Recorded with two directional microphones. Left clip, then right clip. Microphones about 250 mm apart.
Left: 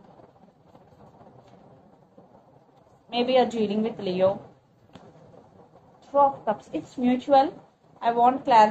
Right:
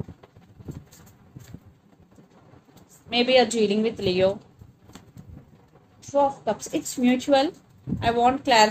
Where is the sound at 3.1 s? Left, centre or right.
Right.